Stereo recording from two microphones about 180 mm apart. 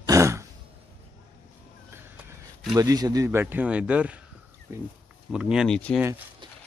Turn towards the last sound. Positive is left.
turn(degrees=-10)  # may be behind; listen again after turning